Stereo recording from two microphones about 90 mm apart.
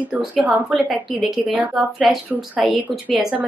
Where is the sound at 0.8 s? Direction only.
5° right (ahead or behind).